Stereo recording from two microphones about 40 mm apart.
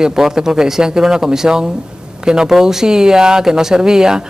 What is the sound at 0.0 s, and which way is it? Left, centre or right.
Speech, centre.